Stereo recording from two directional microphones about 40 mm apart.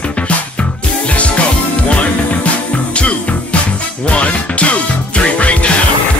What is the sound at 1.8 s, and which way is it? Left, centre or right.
Music, left.